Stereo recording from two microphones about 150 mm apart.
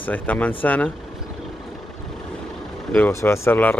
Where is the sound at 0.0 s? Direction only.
10° left (ahead or behind).